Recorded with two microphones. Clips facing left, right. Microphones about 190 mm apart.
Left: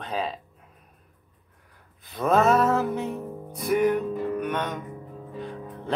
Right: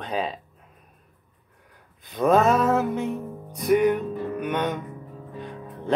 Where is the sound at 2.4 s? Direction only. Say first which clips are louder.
Even; 5° left (ahead or behind).